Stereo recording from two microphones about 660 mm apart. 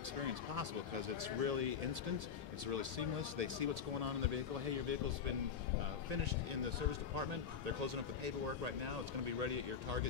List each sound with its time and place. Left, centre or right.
1.2 s speech: right
6.9 s speech: right